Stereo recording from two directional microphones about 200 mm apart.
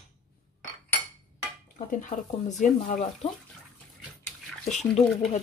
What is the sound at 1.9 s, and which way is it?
Speech, 40° left (ahead or behind).